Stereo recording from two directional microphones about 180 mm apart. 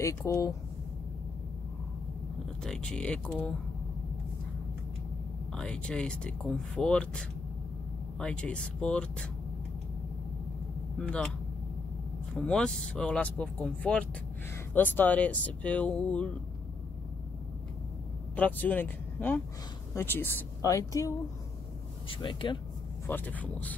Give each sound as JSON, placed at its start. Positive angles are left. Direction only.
{"t": 0.0, "sound": "speech", "side_deg": 20}
{"t": 2.6, "sound": "speech", "side_deg": 5}
{"t": 5.5, "sound": "speech", "side_deg": 5}
{"t": 11.0, "sound": "speech", "side_deg": 5}
{"t": 12.4, "sound": "speech", "side_deg": 5}
{"t": 18.3, "sound": "speech", "side_deg": 10}
{"t": 22.2, "sound": "speech", "side_deg": 25}
{"t": 23.0, "sound": "speech", "side_deg": 10}